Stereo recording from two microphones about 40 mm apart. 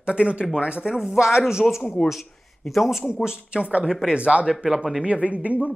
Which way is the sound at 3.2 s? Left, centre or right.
Right.